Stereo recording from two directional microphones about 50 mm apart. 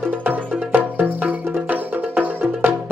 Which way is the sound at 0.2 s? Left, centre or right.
Right.